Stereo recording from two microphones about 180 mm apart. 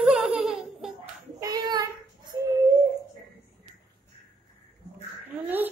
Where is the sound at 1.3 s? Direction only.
20° right (ahead or behind).